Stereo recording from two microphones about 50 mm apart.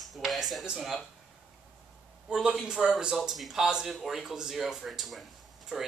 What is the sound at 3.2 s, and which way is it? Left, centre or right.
Speech, centre.